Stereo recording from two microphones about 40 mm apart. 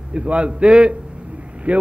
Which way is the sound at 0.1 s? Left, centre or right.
Right.